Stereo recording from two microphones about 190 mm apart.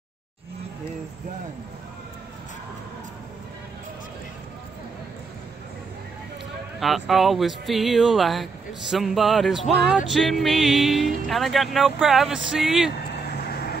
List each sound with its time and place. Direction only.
6.8 s music: centre (ahead or behind)
13.4 s vehicle: 55° left (ahead or behind)